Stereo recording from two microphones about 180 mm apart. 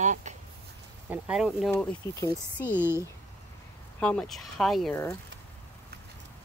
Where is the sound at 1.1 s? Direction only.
5° right (ahead or behind); by 2.8 s 15° left (ahead or behind).